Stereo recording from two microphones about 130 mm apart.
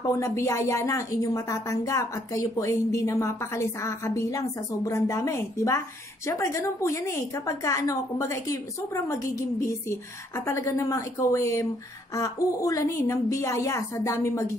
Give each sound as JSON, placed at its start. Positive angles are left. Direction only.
{"t": 0.1, "sound": "a woman's voice", "side_deg": 20}